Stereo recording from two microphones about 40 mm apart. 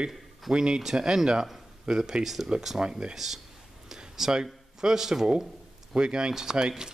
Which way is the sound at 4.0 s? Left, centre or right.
Centre.